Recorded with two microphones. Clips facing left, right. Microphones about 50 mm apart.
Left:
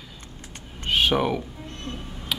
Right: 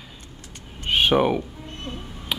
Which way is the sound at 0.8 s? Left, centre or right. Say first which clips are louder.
Right 3 dB; centre.